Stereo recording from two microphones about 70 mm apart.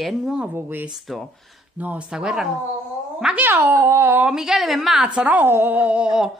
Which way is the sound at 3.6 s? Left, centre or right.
Right.